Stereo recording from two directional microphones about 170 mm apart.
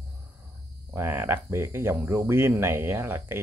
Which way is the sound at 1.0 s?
15° right (ahead or behind).